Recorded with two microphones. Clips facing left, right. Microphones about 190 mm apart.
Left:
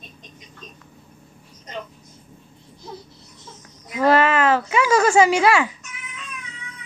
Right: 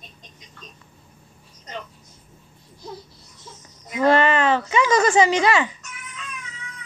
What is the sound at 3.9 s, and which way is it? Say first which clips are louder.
Speech: left 1 dB; 5° left (ahead or behind).